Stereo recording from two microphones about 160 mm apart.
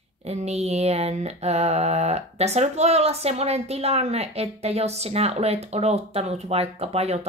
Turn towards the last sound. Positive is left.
turn(degrees=-40)  # may be behind; listen again after turning